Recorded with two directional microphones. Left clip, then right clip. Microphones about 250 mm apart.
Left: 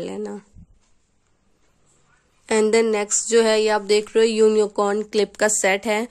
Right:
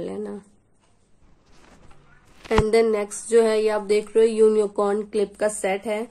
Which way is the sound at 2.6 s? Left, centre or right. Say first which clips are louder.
Left 2 dB; left.